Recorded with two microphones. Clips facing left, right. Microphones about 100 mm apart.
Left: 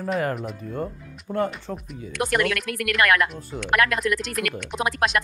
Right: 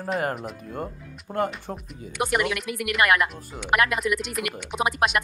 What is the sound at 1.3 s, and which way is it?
Speech, 35° right (ahead or behind).